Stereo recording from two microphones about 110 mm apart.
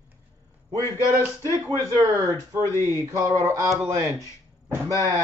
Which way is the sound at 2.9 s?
30° right (ahead or behind).